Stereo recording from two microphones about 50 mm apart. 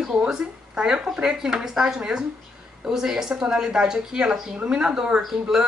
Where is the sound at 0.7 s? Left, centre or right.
Centre.